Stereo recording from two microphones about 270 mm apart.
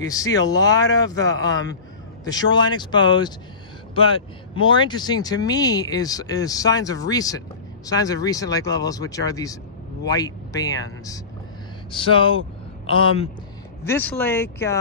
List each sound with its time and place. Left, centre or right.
0.0 s speech: centre
4.8 s speech: centre
13.8 s speech: centre